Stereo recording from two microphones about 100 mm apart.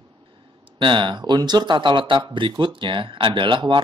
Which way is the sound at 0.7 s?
55° right (ahead or behind).